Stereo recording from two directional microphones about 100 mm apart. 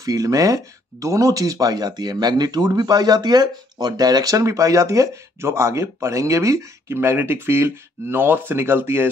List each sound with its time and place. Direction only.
0.0 s speech: 35° right (ahead or behind)